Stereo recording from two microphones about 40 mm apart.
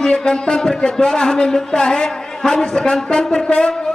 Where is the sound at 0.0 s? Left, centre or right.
Centre.